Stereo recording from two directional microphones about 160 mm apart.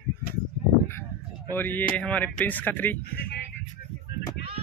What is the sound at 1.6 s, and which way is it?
Speech, 10° left (ahead or behind).